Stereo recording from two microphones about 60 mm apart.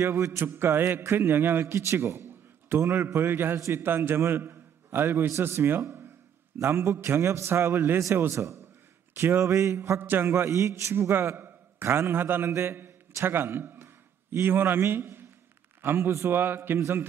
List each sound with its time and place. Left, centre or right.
0.0 s a man's voice: right
8.3 s a man's voice: right
10.3 s a man's voice: right